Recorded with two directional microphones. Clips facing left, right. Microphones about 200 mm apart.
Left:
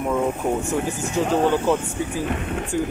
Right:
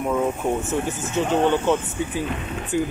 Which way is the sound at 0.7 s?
Centre (ahead or behind).